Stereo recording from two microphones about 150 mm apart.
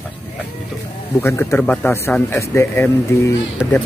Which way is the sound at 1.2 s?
15° left (ahead or behind).